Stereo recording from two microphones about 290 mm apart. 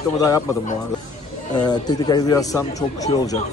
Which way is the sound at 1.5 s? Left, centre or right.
Centre.